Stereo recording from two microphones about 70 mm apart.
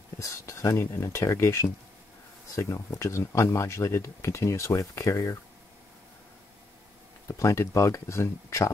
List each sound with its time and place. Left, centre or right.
0.2 s speech: left
7.2 s speech: left